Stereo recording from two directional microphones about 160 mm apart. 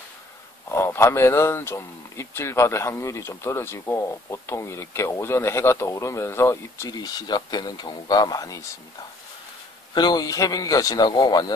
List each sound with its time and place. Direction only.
0.7 s speech: 15° left (ahead or behind)
9.9 s a man's voice: 25° left (ahead or behind)